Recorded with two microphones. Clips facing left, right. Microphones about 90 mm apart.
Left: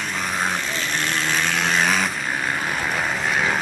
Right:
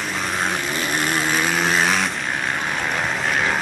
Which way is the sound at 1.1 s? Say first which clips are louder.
Right 1 dB; 5° right (ahead or behind).